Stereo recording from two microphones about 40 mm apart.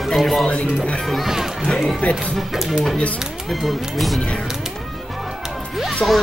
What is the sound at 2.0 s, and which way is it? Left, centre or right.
Speech, left.